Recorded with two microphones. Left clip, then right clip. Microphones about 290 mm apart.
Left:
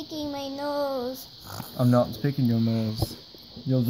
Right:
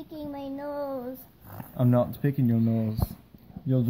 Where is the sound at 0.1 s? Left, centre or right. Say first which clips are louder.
Left 4 dB; left.